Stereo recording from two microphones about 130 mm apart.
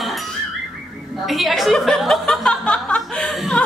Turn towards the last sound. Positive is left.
turn(degrees=0)  # may be behind; listen again after turning